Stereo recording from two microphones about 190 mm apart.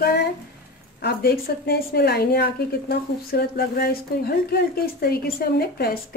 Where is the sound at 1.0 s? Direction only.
55° left (ahead or behind).